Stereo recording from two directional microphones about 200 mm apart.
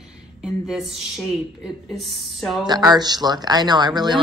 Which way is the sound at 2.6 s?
20° right (ahead or behind).